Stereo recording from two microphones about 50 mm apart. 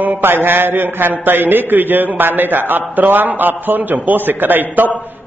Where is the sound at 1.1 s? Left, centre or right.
Right.